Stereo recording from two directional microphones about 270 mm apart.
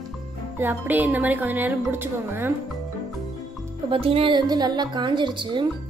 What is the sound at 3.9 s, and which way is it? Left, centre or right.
Speech, right.